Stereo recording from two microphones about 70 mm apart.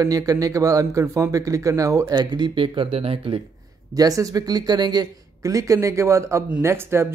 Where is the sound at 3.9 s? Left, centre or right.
Right.